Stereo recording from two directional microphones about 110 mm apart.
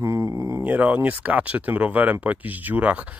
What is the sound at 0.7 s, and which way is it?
Speech, 15° right (ahead or behind).